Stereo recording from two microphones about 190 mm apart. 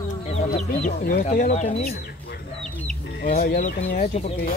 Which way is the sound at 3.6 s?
40° left (ahead or behind).